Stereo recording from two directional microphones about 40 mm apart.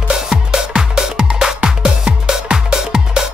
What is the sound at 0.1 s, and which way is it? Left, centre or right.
Music, centre.